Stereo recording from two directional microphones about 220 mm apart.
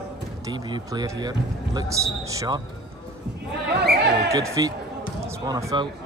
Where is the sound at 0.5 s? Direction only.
20° right (ahead or behind).